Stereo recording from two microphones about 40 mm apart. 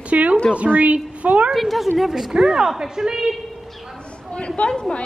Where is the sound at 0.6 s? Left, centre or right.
Right.